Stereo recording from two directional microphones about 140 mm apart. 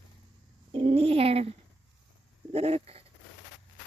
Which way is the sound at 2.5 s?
45° right (ahead or behind).